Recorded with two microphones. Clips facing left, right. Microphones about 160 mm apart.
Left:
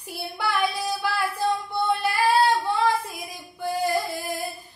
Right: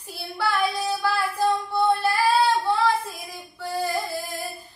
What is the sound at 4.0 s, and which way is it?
Singing, 70° left (ahead or behind).